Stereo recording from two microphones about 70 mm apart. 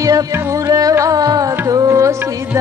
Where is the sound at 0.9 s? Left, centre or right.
Right.